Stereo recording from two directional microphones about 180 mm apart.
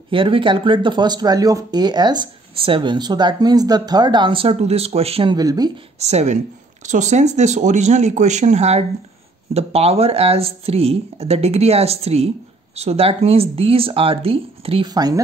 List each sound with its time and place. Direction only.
0.1 s speech: 30° right (ahead or behind)
5.9 s speech: 35° right (ahead or behind)